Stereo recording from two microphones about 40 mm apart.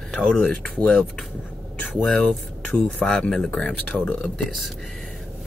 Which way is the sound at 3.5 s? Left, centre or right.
Left.